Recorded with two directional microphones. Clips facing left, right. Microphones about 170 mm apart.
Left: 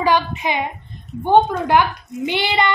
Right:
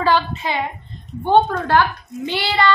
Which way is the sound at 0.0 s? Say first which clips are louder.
Even; 15° left (ahead or behind).